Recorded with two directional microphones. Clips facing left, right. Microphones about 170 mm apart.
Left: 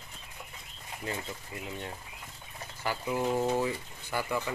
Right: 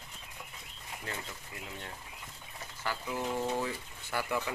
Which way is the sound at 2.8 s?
15° left (ahead or behind).